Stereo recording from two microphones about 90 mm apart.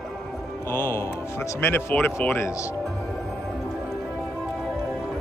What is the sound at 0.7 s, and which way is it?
Speech, 25° left (ahead or behind).